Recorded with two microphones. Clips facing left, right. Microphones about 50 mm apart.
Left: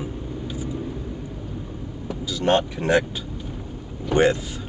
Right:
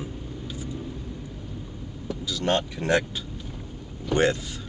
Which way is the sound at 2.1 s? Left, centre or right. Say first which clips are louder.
Left 4 dB; left.